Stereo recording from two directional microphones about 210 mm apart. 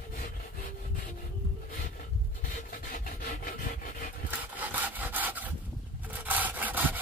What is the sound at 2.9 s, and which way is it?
Wood, 45° left (ahead or behind).